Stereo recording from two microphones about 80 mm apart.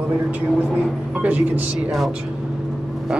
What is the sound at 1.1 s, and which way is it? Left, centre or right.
Speech, centre.